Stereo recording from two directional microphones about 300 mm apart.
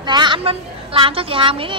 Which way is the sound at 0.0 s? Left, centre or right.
Centre.